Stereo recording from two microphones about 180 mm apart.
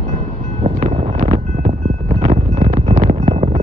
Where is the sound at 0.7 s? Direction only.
35° right (ahead or behind).